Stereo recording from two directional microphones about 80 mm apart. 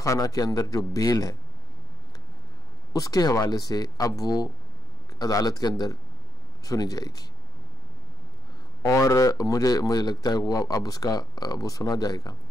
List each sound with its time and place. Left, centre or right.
0.0 s speech: left
2.9 s speech: left
8.8 s speech: left